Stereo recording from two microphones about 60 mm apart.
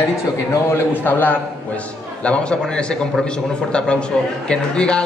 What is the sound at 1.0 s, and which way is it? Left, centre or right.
Speech, left.